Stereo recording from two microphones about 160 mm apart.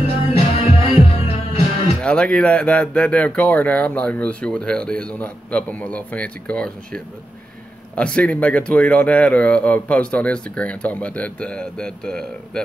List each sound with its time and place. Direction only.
0.0 s music: 40° left (ahead or behind)
2.0 s speech: 5° left (ahead or behind)